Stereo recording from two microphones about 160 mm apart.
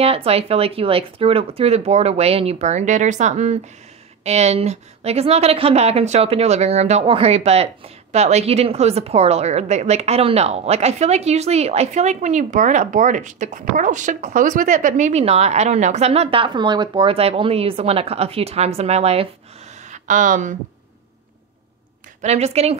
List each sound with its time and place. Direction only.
0.0 s a woman's voice: 40° right (ahead or behind)
19.7 s a sound: 50° right (ahead or behind)
22.2 s speech: 45° right (ahead or behind)